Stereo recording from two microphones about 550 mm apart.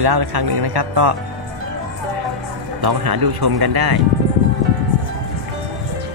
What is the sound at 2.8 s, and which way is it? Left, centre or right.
Speech, right.